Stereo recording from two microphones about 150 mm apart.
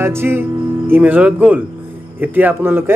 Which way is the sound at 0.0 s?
15° right (ahead or behind).